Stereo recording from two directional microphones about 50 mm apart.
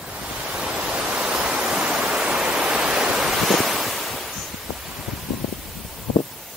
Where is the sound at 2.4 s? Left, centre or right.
Centre.